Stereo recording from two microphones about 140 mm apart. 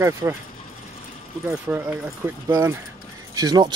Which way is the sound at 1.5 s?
10° right (ahead or behind).